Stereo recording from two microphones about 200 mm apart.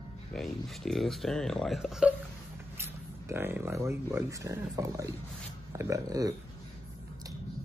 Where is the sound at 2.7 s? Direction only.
10° right (ahead or behind).